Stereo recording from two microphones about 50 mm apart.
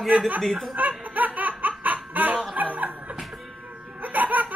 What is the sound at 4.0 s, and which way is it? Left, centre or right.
Laughter, right.